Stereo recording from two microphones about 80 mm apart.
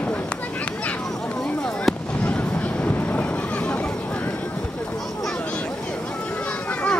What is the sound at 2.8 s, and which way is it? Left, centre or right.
Vehicle, centre.